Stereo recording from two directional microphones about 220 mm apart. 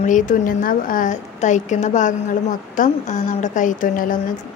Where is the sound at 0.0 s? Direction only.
35° left (ahead or behind).